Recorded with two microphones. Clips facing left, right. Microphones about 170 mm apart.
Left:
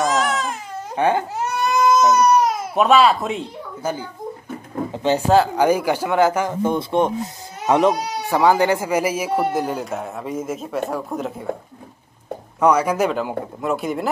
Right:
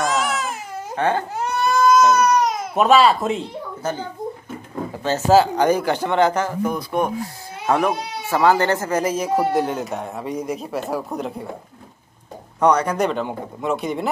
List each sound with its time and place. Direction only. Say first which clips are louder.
0.0 s baby cry: left 2 dB; centre (ahead or behind)
0.9 s crying: left 2 dB; 15° left (ahead or behind)
2.7 s speech: even; centre (ahead or behind)
3.8 s speech: even; 10° left (ahead or behind)
6.5 s speech: left 3 dB; 25° left (ahead or behind); by 11.4 s centre (ahead or behind)
12.5 s speech: left 1 dB; 5° left (ahead or behind)